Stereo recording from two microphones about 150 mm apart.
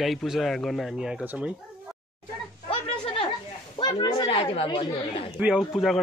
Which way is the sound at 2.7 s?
35° left (ahead or behind).